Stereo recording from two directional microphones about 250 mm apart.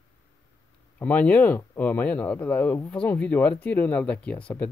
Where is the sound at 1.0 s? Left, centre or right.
Centre.